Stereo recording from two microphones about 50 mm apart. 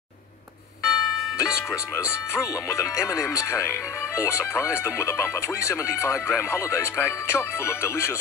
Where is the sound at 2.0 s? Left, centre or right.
Left.